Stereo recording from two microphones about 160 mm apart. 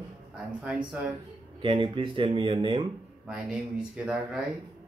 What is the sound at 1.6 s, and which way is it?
Speech, 30° right (ahead or behind).